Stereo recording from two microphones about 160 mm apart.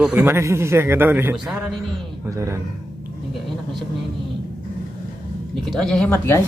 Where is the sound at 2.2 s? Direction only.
20° right (ahead or behind).